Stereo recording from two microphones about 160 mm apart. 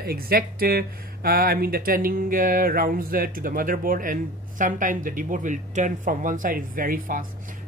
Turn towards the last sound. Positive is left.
turn(degrees=-60)  # may be behind; listen again after turning